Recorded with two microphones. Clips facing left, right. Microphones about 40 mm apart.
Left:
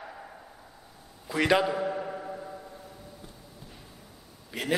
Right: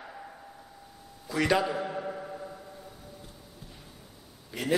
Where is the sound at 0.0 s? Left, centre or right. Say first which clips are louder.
Left 1 dB; centre.